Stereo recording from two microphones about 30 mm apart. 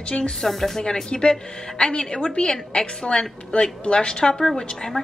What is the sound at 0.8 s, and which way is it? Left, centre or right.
A woman's voice, left.